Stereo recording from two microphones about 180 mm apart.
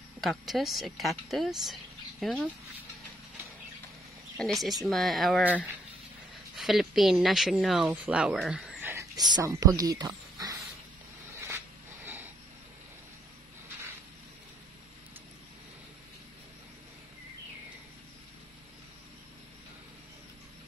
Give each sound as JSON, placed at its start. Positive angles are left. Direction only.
{"t": 0.2, "sound": "speech", "side_deg": 0}
{"t": 4.4, "sound": "speech", "side_deg": 0}
{"t": 8.9, "sound": "speech", "side_deg": -20}
{"t": 11.4, "sound": "a sound", "side_deg": -15}